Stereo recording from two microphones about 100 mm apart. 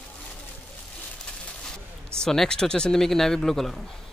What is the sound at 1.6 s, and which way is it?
Speech, 5° left (ahead or behind).